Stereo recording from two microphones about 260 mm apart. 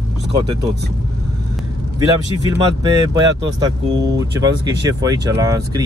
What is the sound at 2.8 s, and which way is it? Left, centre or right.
Speech, centre.